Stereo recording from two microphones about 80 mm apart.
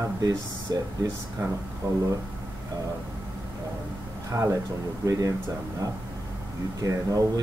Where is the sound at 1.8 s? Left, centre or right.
Right.